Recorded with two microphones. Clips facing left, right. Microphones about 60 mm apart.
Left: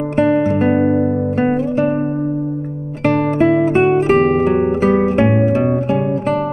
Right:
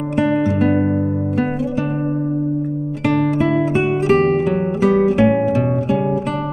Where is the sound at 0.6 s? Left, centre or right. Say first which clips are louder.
Left 3 dB; left.